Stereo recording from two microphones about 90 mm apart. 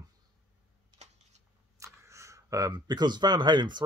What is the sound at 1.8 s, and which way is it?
Speech, 35° right (ahead or behind).